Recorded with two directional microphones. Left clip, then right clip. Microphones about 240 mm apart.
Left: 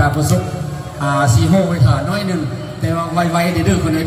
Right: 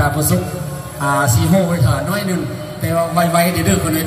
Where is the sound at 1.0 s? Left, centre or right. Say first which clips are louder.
Even; right.